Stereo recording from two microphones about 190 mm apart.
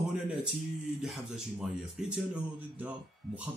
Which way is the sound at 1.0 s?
Centre (ahead or behind).